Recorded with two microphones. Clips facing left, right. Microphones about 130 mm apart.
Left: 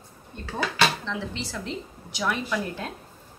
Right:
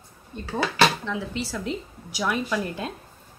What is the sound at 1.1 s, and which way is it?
A woman's voice, 10° right (ahead or behind).